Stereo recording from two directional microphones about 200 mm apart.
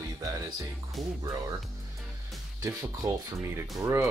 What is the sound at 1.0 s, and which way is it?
Speech, centre (ahead or behind).